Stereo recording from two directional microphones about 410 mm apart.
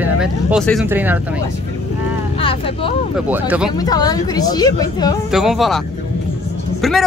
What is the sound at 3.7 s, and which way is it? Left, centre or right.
A woman's voice, centre.